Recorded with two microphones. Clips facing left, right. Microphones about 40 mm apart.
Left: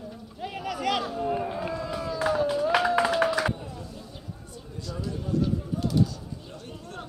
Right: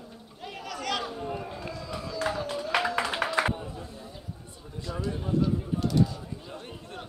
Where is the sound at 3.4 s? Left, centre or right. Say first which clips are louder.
Right 1 dB; right.